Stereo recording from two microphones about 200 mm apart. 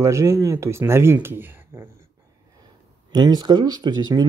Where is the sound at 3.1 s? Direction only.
20° right (ahead or behind).